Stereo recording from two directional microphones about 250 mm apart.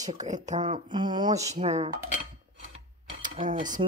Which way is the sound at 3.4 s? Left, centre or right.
Right.